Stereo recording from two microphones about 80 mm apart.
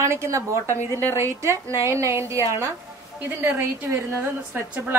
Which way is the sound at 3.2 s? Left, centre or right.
Right.